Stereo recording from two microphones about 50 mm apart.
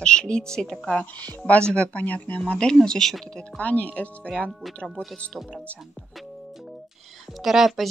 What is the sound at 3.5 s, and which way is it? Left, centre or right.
Speech, left.